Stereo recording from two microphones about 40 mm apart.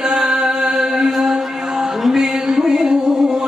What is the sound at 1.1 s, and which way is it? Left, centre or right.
Music, centre.